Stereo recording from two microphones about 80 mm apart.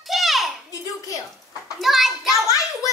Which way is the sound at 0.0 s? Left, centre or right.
Centre.